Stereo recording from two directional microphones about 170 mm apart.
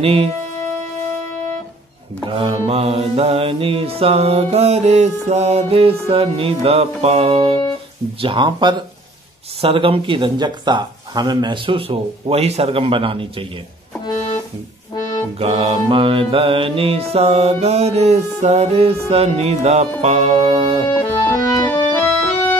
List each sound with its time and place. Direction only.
0.0 s music: 35° right (ahead or behind)
2.2 s music: 30° right (ahead or behind)
8.2 s speech: 30° right (ahead or behind)
9.6 s music: 35° right (ahead or behind)
14.0 s music: 30° left (ahead or behind)
15.3 s music: 35° right (ahead or behind)
21.2 s music: 25° left (ahead or behind)